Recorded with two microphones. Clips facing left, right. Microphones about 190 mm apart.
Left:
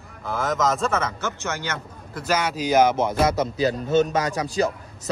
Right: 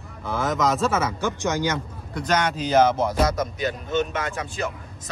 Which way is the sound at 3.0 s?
25° left (ahead or behind).